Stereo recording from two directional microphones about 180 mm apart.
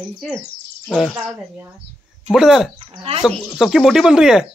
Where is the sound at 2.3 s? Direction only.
Centre (ahead or behind).